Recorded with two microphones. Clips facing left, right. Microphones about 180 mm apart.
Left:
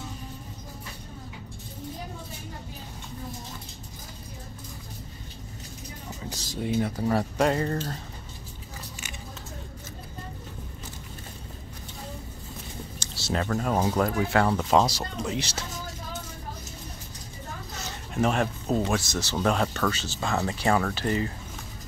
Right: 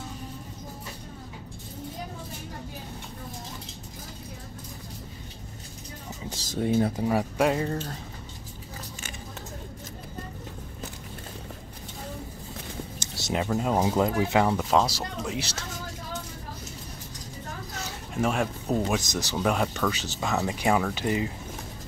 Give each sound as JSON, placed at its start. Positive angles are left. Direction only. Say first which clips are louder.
{"t": 7.0, "sound": "speech", "louder": "even", "side_deg": -10}
{"t": 13.2, "sound": "speech", "louder": "right 1 dB", "side_deg": -15}
{"t": 14.6, "sound": "speech", "louder": "left 1 dB", "side_deg": 0}
{"t": 17.8, "sound": "speech", "louder": "left 2 dB", "side_deg": -5}